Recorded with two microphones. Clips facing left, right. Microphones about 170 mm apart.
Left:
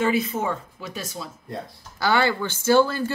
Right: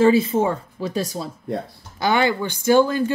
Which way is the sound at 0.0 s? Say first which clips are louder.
Right 7 dB; 30° right (ahead or behind).